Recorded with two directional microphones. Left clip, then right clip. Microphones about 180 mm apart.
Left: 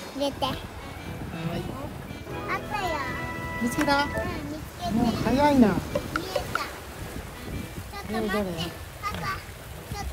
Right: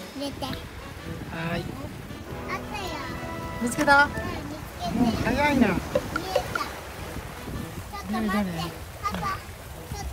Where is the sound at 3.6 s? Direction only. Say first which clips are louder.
Right 5 dB; 10° left (ahead or behind).